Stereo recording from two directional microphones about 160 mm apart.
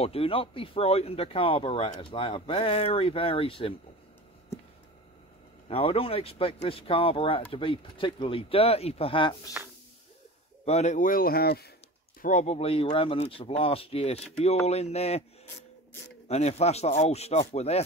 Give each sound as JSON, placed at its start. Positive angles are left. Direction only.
{"t": 0.0, "sound": "speech", "side_deg": 35}
{"t": 5.7, "sound": "speech", "side_deg": 35}
{"t": 9.6, "sound": "a sound", "side_deg": -10}
{"t": 10.6, "sound": "speech", "side_deg": 45}
{"t": 12.2, "sound": "speech", "side_deg": 50}
{"t": 16.3, "sound": "speech", "side_deg": 40}